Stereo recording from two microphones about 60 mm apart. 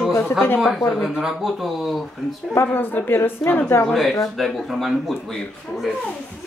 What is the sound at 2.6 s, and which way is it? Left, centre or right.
A woman's voice, left.